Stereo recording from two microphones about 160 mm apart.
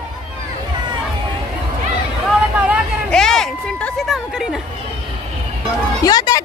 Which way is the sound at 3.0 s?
5° left (ahead or behind).